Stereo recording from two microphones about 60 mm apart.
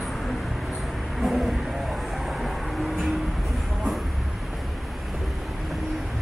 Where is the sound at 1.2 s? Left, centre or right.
Centre.